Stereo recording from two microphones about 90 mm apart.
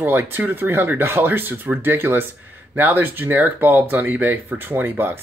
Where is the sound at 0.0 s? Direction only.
25° right (ahead or behind).